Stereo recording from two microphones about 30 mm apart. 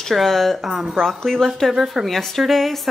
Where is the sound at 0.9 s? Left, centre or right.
Centre.